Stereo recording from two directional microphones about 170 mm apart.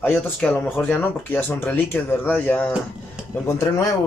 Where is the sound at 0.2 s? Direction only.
10° left (ahead or behind).